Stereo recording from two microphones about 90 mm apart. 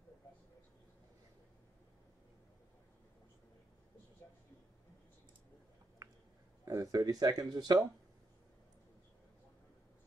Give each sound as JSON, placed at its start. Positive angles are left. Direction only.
{"t": 6.6, "sound": "speech", "side_deg": -40}